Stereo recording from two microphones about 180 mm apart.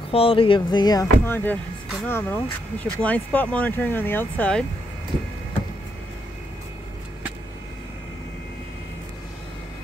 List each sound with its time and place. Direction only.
0.1 s speech: 30° left (ahead or behind)
1.2 s speech: 10° left (ahead or behind)